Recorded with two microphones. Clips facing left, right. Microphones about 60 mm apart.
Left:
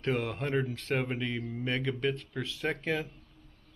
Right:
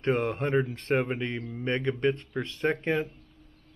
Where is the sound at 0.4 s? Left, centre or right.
Centre.